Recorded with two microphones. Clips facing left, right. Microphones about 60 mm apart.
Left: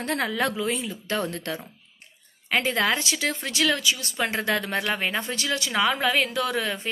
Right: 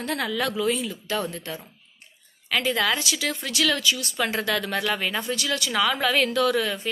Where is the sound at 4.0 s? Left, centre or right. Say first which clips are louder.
Right 1 dB; left.